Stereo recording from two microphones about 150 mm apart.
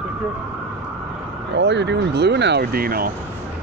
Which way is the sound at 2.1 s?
90° right.